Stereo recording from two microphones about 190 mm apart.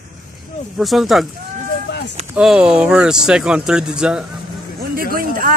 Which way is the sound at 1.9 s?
60° left (ahead or behind).